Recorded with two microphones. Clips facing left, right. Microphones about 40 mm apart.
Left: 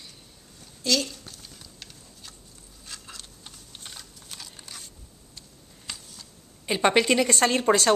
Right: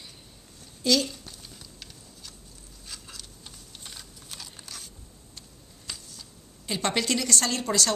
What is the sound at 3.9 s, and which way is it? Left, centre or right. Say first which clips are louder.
Computer keyboard: even; centre.